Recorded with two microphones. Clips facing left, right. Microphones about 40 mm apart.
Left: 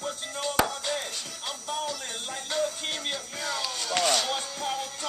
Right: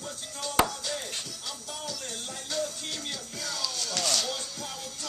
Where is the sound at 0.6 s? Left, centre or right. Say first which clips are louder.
Left 4 dB; left.